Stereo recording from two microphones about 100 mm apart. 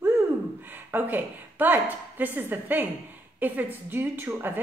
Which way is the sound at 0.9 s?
20° right (ahead or behind).